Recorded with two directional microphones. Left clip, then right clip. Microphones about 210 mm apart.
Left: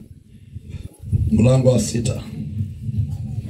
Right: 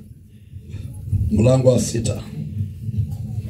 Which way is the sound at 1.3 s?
10° left (ahead or behind).